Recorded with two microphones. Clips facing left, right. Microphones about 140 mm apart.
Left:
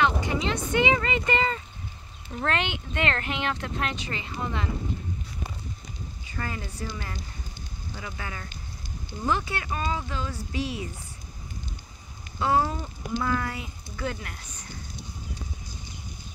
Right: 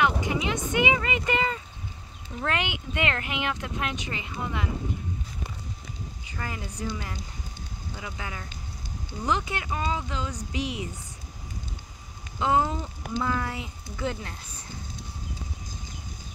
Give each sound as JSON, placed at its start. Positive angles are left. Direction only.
{"t": 0.0, "sound": "a sound", "side_deg": -15}
{"t": 2.4, "sound": "speech", "side_deg": -10}
{"t": 6.2, "sound": "speech", "side_deg": -15}
{"t": 12.4, "sound": "speech", "side_deg": -20}